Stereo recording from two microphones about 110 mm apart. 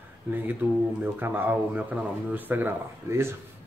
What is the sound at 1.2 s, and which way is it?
Speech, 20° right (ahead or behind).